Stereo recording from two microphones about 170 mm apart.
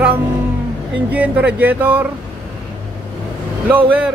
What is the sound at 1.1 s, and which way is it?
Speech, 10° right (ahead or behind).